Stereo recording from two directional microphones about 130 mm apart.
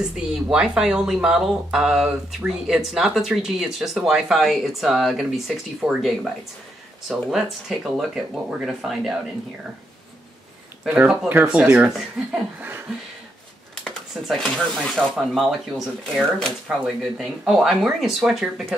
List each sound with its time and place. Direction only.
0.1 s speech: 5° right (ahead or behind)
11.0 s speech: 15° right (ahead or behind)
13.8 s speech: centre (ahead or behind)